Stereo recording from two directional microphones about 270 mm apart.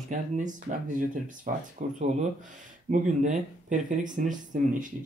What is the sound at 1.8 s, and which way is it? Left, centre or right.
Speech, right.